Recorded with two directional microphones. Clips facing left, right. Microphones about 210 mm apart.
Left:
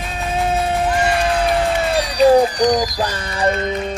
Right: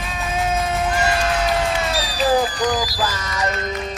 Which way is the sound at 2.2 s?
25° left (ahead or behind).